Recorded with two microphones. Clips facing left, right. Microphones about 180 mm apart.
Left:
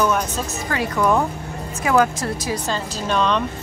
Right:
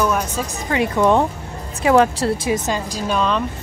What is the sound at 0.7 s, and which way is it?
A woman's voice, 25° right (ahead or behind).